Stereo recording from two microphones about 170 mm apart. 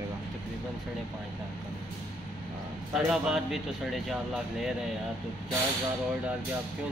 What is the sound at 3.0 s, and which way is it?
Speech, centre (ahead or behind).